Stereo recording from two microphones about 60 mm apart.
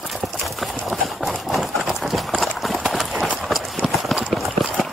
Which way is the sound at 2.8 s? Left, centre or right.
Centre.